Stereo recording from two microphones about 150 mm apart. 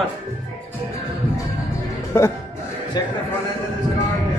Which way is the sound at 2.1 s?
15° left (ahead or behind).